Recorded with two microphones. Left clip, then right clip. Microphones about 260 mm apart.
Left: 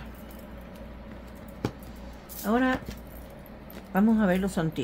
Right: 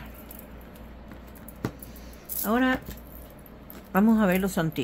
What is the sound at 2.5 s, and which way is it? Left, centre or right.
Speech, centre.